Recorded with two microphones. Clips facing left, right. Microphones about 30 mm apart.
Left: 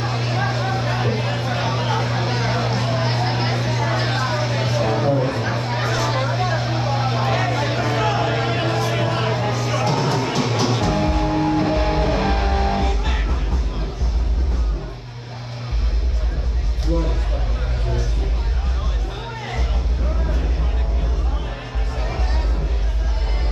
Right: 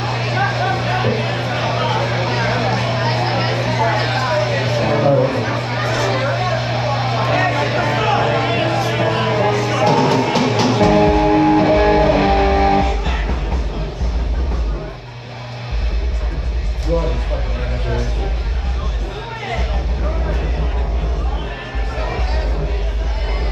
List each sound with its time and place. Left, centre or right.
0.0 s vehicle: right
5.3 s a sound: right
7.5 s music: right
9.3 s music: right
9.9 s music: right